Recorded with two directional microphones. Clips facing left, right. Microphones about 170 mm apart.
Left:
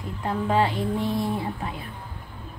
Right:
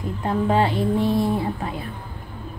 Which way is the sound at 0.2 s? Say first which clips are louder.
Right 3 dB; 30° right (ahead or behind).